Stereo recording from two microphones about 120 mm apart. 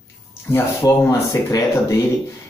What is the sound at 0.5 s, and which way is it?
Speech, 25° left (ahead or behind).